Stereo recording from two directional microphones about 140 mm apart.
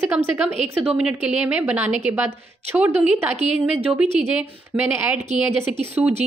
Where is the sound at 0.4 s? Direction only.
5° right (ahead or behind).